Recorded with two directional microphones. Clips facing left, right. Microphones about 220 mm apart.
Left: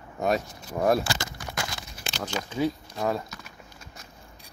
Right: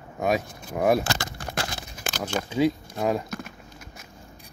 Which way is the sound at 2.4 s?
45° right (ahead or behind).